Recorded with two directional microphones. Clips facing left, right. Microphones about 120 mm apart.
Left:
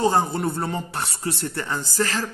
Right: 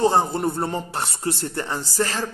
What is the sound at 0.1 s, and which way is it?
A man's voice, 30° right (ahead or behind).